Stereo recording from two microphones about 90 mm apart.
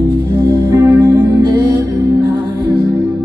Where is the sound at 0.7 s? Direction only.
25° right (ahead or behind).